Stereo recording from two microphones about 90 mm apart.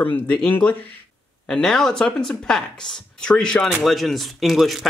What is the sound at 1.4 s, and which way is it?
Speech, 5° left (ahead or behind).